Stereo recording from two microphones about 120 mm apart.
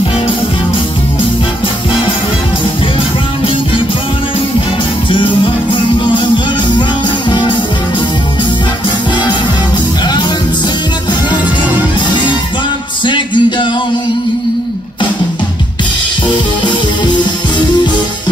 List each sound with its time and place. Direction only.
5.1 s music: 45° left (ahead or behind)
12.1 s music: 40° left (ahead or behind)